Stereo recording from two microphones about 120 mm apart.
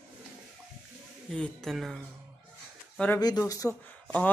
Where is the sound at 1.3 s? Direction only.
5° left (ahead or behind).